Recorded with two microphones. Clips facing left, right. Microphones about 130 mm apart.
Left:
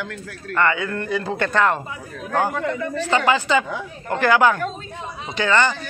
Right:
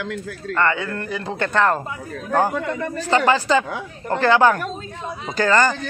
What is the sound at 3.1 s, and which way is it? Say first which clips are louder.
Speech: right 2 dB; 35° right (ahead or behind).